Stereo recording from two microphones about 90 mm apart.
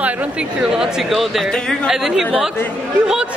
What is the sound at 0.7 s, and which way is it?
Speech, 5° right (ahead or behind).